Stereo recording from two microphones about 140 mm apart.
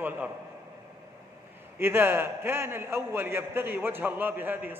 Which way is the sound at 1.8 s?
15° right (ahead or behind).